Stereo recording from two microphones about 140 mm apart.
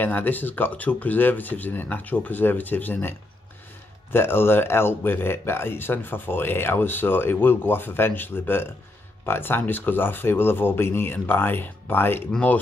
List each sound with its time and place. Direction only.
0.0 s speech: 15° left (ahead or behind)